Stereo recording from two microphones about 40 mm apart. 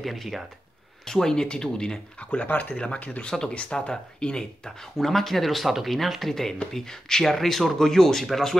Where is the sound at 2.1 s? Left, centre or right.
Left.